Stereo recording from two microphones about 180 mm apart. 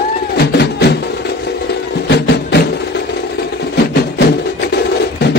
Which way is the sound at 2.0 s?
65° left (ahead or behind).